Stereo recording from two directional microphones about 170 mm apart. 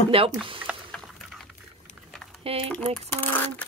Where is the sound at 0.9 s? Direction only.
Centre (ahead or behind).